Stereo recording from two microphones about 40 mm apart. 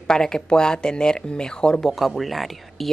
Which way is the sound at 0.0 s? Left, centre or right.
Centre.